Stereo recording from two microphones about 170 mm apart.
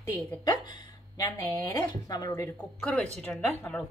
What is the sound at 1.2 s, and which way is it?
Speech, 15° left (ahead or behind).